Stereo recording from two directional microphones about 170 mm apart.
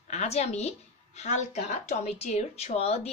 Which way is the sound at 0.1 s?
40° left (ahead or behind).